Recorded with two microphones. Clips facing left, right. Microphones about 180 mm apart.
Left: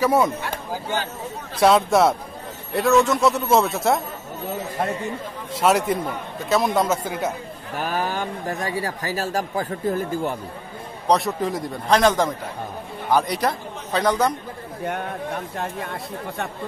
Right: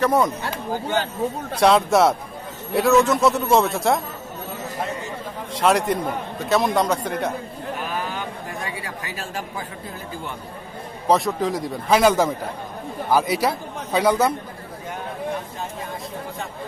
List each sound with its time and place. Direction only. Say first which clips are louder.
0.0 s speech: even; 5° left (ahead or behind)
1.6 s a man's voice: even; centre (ahead or behind)
5.5 s a man's voice: even; centre (ahead or behind)
7.8 s a man's voice: left 6 dB; 40° left (ahead or behind)
11.1 s a man's voice: right 1 dB; centre (ahead or behind)
15.6 s speech: left 2 dB; 65° left (ahead or behind)